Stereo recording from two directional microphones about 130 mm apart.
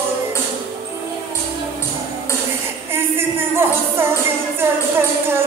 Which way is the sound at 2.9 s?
20° right (ahead or behind).